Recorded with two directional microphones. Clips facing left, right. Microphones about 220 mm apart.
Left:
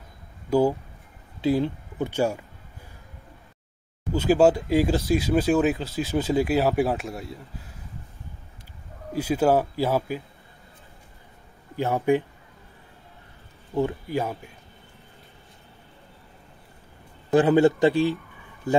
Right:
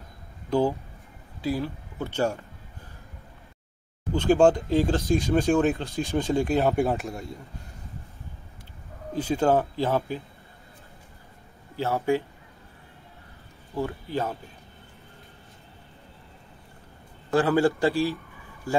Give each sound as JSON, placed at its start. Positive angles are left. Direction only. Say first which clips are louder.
{"t": 0.5, "sound": "speech", "louder": "left 3 dB", "side_deg": 10}
{"t": 1.4, "sound": "speech", "louder": "left 5 dB", "side_deg": 25}
{"t": 2.0, "sound": "speech", "louder": "left 1 dB", "side_deg": 10}
{"t": 4.1, "sound": "speech", "louder": "left 1 dB", "side_deg": 5}
{"t": 9.1, "sound": "speech", "louder": "left 2 dB", "side_deg": 10}
{"t": 11.7, "sound": "speech", "louder": "left 3 dB", "side_deg": 15}
{"t": 13.7, "sound": "a man's voice", "louder": "left 5 dB", "side_deg": 20}
{"t": 14.1, "sound": "speech", "louder": "left 2 dB", "side_deg": 10}
{"t": 17.3, "sound": "a man's voice", "louder": "left 4 dB", "side_deg": 20}